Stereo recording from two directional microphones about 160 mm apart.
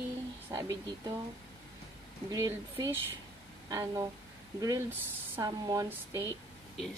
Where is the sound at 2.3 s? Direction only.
20° right (ahead or behind).